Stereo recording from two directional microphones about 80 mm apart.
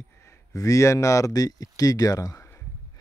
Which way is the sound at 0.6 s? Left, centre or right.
Left.